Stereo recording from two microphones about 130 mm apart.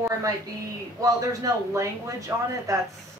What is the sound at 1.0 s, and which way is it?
A man's voice, 25° right (ahead or behind).